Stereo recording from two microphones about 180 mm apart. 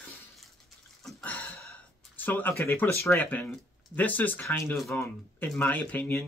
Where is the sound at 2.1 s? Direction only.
10° left (ahead or behind).